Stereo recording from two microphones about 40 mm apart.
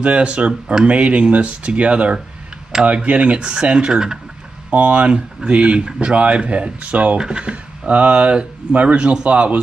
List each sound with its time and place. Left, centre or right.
0.0 s speech: right
4.6 s speech: right
7.2 s speech: right